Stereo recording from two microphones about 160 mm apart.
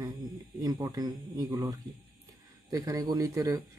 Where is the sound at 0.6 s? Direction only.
20° right (ahead or behind).